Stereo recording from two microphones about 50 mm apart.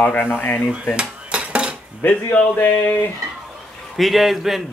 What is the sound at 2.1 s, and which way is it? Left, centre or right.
Speech, left.